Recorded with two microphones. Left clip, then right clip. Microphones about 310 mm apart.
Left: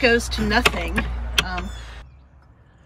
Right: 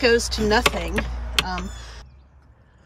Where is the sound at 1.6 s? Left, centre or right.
Right.